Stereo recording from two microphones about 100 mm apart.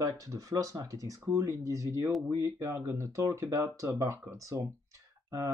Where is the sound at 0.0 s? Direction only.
35° right (ahead or behind).